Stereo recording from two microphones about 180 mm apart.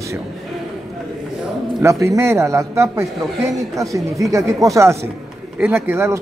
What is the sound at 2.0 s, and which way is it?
Speech, 15° right (ahead or behind).